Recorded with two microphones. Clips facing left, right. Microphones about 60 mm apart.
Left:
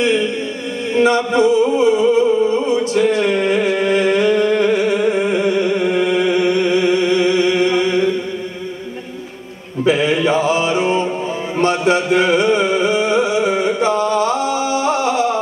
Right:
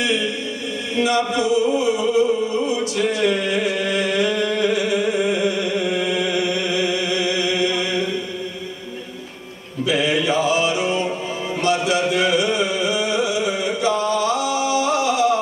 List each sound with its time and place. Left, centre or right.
0.0 s music: left
9.8 s mantra: left
11.6 s music: left